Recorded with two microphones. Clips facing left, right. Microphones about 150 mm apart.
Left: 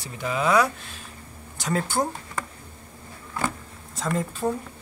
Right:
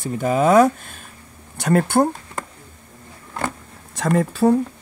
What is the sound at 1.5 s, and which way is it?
Speech, 60° right (ahead or behind).